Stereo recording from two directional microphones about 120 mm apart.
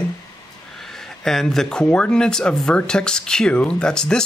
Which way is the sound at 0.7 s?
5° left (ahead or behind).